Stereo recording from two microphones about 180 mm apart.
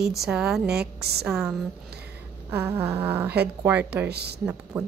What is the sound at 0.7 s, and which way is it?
Speech, 65° right (ahead or behind).